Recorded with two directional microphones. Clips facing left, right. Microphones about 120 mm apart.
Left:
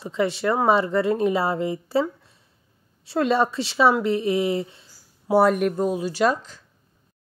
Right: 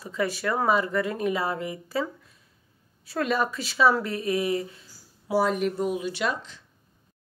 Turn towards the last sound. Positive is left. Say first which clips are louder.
# left 7 dB
turn(degrees=40)  # may be behind; listen again after turning